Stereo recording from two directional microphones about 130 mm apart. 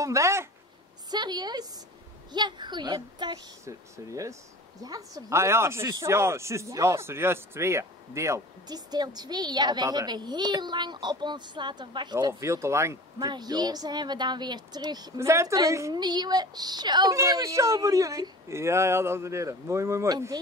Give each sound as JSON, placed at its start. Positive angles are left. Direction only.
{"t": 0.0, "sound": "a woman's voice", "side_deg": -25}
{"t": 1.1, "sound": "speech", "side_deg": -35}
{"t": 3.6, "sound": "a woman's voice", "side_deg": -25}
{"t": 13.3, "sound": "speech", "side_deg": -30}
{"t": 15.1, "sound": "a woman's voice", "side_deg": -20}